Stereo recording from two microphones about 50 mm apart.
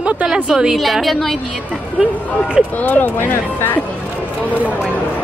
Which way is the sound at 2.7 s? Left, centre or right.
Left.